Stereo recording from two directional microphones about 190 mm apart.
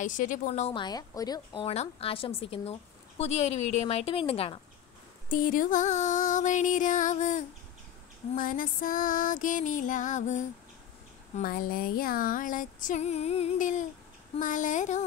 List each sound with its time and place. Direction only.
0.0 s a woman's voice: 45° left (ahead or behind)
5.3 s a woman's voice: 45° left (ahead or behind)